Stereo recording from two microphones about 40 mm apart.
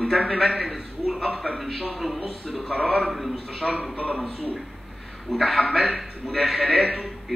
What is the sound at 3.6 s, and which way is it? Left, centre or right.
Speech, left.